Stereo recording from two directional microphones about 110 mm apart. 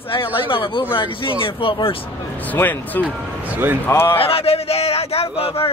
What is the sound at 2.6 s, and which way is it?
Speech, 15° left (ahead or behind).